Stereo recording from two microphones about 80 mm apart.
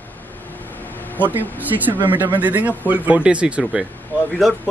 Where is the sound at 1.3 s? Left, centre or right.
Right.